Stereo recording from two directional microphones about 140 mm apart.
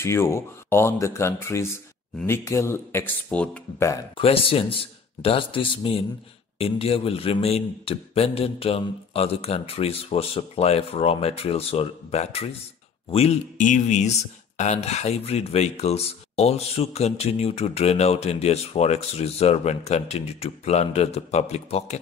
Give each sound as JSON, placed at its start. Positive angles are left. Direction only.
{"t": 0.0, "sound": "speech", "side_deg": 20}
{"t": 4.2, "sound": "speech", "side_deg": 45}
{"t": 13.6, "sound": "speech", "side_deg": 65}